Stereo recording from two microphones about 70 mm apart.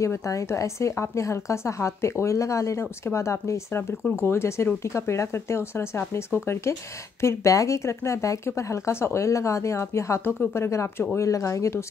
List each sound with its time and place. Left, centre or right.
0.0 s speech: left